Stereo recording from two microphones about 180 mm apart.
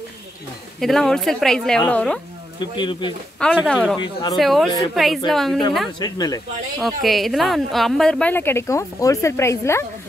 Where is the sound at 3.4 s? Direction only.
5° left (ahead or behind).